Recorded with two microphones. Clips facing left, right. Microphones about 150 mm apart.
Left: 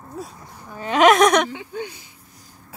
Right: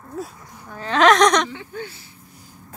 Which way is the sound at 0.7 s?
15° left (ahead or behind).